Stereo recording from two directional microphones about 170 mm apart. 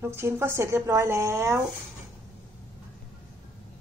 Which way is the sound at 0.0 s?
15° right (ahead or behind).